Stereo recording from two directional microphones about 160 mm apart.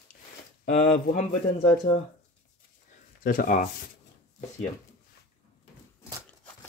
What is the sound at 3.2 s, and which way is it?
Speech, 55° left (ahead or behind).